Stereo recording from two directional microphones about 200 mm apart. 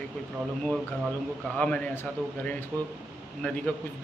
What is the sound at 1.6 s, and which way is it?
Speech, 5° left (ahead or behind).